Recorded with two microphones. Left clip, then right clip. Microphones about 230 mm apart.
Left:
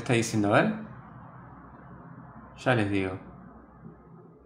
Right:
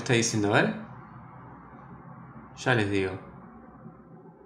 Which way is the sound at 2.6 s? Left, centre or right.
Centre.